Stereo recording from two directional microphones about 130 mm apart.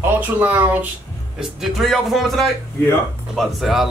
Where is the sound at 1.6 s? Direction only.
Centre (ahead or behind).